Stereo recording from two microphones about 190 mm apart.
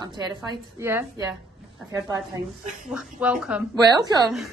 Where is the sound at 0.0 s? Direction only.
25° right (ahead or behind).